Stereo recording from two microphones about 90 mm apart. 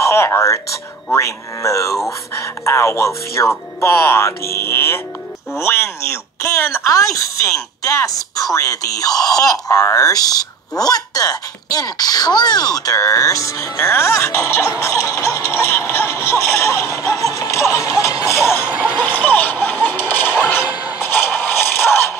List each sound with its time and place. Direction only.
0.1 s speech: 30° left (ahead or behind)
17.0 s music: 35° left (ahead or behind)
18.7 s a sound: 15° right (ahead or behind)
19.0 s music: 20° left (ahead or behind)